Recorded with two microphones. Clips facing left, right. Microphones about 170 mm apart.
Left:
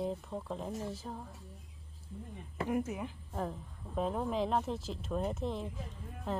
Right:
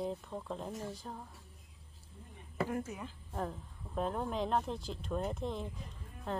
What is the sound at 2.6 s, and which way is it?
Speech, 20° left (ahead or behind).